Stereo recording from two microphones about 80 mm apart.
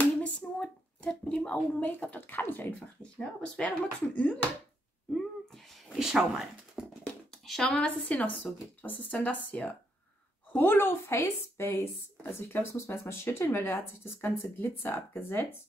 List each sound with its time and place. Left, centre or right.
0.0 s a sound: centre
1.9 s speech: left
3.0 s speech: centre
5.9 s speech: centre
7.2 s speech: centre; by 15.6 s left